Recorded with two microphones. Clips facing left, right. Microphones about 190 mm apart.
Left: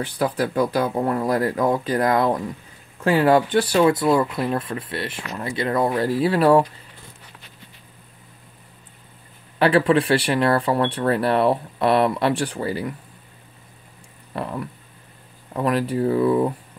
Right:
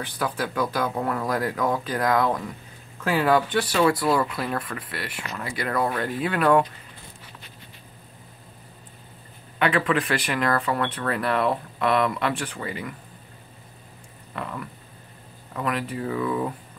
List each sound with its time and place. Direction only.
0.0 s speech: 30° left (ahead or behind)
9.6 s speech: 35° left (ahead or behind)
14.3 s speech: 35° left (ahead or behind)